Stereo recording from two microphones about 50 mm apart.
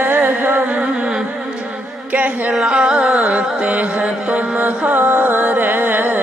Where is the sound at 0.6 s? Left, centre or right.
Right.